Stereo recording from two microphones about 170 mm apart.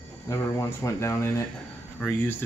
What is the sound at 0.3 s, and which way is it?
Speech, 15° left (ahead or behind).